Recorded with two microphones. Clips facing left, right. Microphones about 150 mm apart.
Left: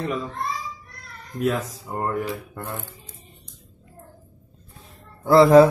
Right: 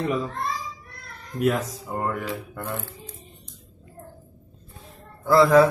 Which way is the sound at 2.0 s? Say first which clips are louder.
Left 4 dB; 25° left (ahead or behind).